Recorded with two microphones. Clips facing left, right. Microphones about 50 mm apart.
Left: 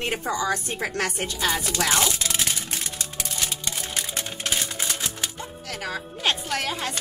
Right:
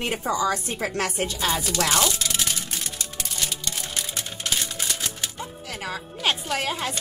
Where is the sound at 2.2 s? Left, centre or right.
Left.